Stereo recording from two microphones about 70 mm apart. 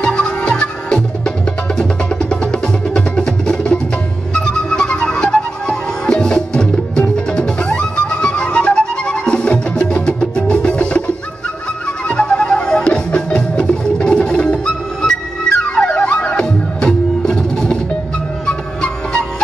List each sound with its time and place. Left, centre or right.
0.0 s music: centre
12.1 s music: centre